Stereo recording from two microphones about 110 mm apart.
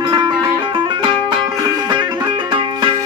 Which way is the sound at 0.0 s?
40° right (ahead or behind).